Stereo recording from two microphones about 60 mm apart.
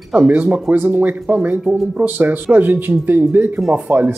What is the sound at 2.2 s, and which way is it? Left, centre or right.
Speech, right.